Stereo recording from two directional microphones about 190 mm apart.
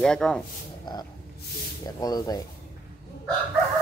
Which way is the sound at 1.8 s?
20° left (ahead or behind).